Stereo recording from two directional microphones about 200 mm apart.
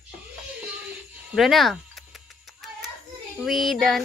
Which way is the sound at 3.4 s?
Centre (ahead or behind).